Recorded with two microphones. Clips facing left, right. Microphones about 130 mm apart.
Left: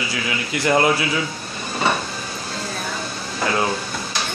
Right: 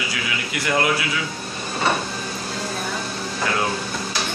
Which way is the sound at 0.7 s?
30° left (ahead or behind).